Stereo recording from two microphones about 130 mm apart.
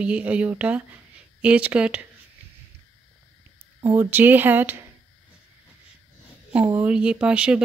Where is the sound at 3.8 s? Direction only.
20° right (ahead or behind).